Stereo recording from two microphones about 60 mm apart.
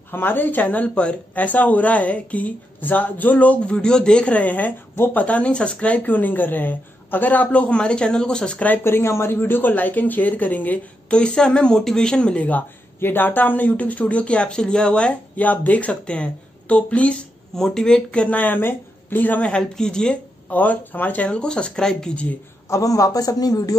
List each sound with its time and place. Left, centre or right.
0.1 s speech: left
5.2 s speech: left
8.8 s speech: left
11.1 s speech: centre
17.6 s speech: centre; by 19.4 s left
19.6 s speech: centre
20.4 s speech: left
21.4 s speech: centre
22.7 s a man's voice: left